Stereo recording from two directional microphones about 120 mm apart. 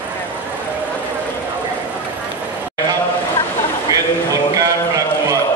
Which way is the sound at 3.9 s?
30° right (ahead or behind).